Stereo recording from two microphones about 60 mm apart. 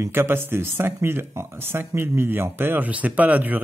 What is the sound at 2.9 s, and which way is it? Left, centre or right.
Speech, right.